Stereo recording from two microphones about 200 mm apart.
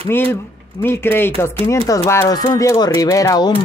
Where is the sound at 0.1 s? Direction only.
10° left (ahead or behind).